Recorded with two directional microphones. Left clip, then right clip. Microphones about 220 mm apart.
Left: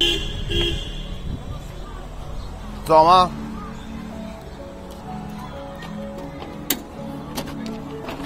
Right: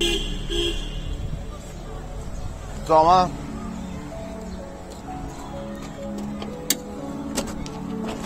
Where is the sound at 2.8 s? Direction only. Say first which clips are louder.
Left 3 dB; 10° left (ahead or behind).